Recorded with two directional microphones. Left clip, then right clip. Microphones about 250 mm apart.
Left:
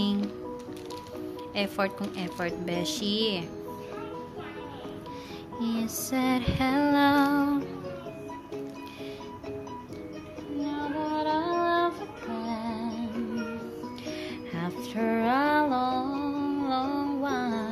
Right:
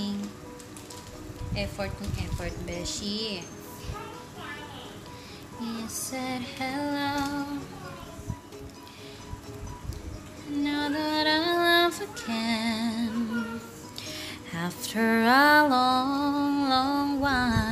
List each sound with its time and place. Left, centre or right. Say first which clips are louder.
1.5 s speech: left 4 dB; left
5.6 s female singing: left 3 dB; left
10.6 s music: right 3 dB; centre
14.0 s music: even; centre